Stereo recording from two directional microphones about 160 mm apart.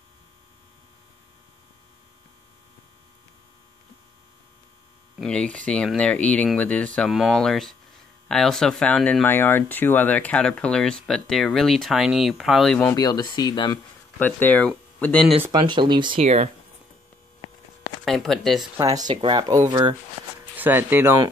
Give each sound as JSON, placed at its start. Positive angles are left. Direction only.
{"t": 5.2, "sound": "speech", "side_deg": 5}
{"t": 12.8, "sound": "speech", "side_deg": 25}
{"t": 14.1, "sound": "speech", "side_deg": 10}
{"t": 15.5, "sound": "speech", "side_deg": -30}
{"t": 18.0, "sound": "speech", "side_deg": 0}
{"t": 18.6, "sound": "speech", "side_deg": -20}
{"t": 20.5, "sound": "speech", "side_deg": -10}